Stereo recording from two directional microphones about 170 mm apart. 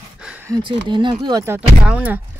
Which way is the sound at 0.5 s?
25° right (ahead or behind).